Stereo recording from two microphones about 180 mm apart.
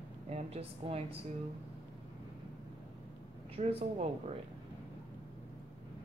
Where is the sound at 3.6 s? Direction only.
35° right (ahead or behind).